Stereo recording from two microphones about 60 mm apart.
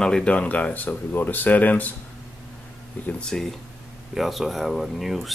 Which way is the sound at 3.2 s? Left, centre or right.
Centre.